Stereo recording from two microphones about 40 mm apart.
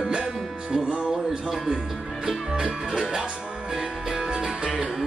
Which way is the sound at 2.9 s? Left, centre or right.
Centre.